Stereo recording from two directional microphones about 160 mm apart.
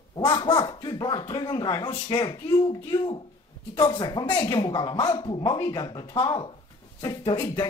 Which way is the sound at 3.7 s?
30° left (ahead or behind).